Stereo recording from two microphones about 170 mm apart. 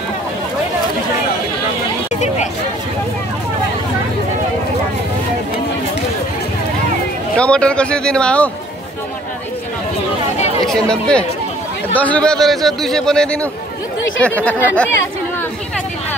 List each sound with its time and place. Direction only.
2.1 s speech: 40° left (ahead or behind)
7.3 s speech: 5° left (ahead or behind)
10.6 s a man's voice: 5° left (ahead or behind)